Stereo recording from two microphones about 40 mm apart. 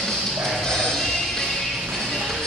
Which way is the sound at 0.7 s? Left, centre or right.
Centre.